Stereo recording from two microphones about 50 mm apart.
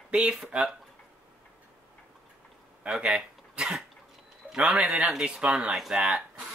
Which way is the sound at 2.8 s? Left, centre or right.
Centre.